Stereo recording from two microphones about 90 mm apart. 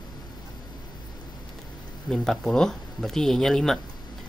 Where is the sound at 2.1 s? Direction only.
5° left (ahead or behind).